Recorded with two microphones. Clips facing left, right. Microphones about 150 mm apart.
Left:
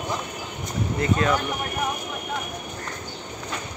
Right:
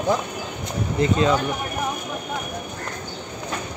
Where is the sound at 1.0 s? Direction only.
20° right (ahead or behind).